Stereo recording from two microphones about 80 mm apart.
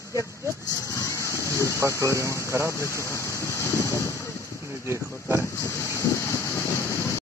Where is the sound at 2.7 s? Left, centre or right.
Left.